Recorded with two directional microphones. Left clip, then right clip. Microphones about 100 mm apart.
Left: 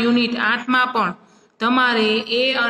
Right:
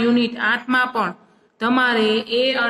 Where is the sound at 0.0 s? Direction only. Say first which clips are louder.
Left 1 dB; 25° left (ahead or behind).